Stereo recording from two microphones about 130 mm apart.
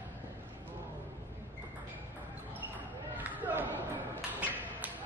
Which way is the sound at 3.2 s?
15° right (ahead or behind).